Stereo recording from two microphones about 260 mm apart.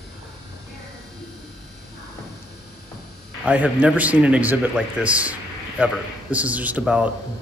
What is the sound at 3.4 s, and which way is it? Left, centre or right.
Speech, centre.